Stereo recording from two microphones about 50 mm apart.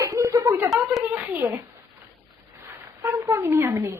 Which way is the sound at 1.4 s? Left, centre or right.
Right.